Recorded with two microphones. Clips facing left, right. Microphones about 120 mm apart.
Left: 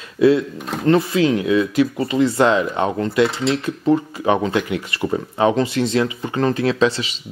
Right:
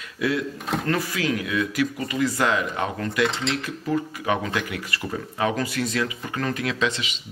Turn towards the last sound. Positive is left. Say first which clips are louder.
# left 8 dB
turn(degrees=35)  # may be behind; listen again after turning